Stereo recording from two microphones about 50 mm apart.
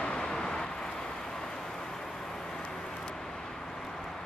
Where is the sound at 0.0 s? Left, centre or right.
Centre.